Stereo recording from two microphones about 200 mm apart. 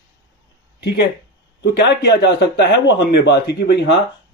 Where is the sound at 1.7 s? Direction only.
60° left (ahead or behind).